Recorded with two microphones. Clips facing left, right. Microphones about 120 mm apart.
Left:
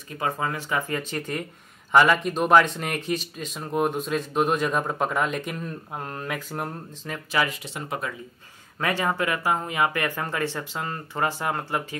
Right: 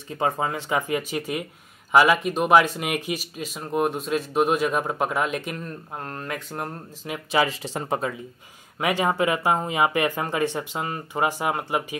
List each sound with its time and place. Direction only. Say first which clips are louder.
0.1 s speech: right 3 dB; 25° right (ahead or behind); by 6.7 s centre (ahead or behind)
7.2 s speech: right 3 dB; 25° right (ahead or behind)
8.7 s speech: right 3 dB; 15° right (ahead or behind)